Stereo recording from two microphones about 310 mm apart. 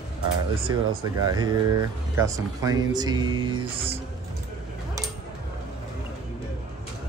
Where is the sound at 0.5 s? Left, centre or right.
Centre.